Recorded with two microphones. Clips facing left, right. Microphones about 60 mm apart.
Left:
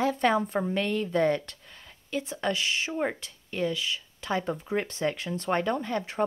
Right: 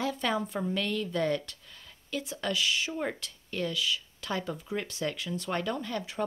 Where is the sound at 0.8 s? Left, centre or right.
Left.